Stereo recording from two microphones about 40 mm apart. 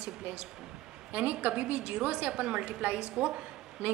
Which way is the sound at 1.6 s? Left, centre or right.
Right.